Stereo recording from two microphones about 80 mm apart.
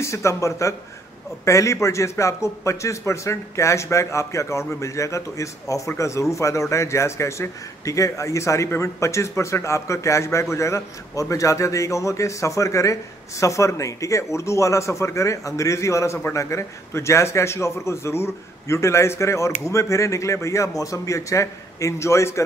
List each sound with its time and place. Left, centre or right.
0.0 s a man's voice: left